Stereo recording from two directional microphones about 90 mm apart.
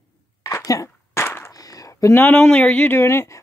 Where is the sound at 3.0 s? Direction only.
30° left (ahead or behind).